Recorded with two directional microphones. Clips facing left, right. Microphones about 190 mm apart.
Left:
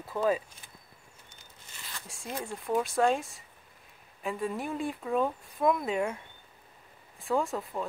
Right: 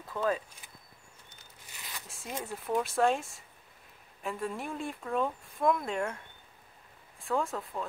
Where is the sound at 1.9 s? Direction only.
Centre (ahead or behind).